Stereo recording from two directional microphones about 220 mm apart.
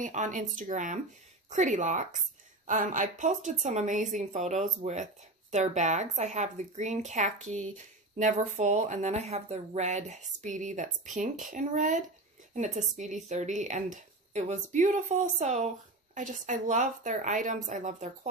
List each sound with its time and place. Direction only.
0.0 s a woman's voice: 35° right (ahead or behind)